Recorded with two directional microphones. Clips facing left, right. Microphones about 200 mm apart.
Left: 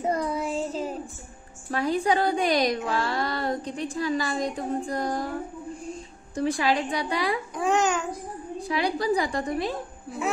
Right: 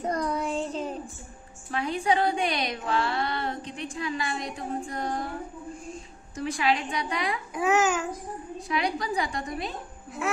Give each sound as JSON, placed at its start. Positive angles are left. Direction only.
{"t": 0.0, "sound": "child singing", "side_deg": 5}
{"t": 1.7, "sound": "speech", "side_deg": 40}
{"t": 7.5, "sound": "a child's voice", "side_deg": -5}
{"t": 8.5, "sound": "speech", "side_deg": 35}